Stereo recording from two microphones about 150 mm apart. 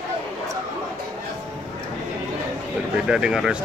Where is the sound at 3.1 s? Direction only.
5° right (ahead or behind).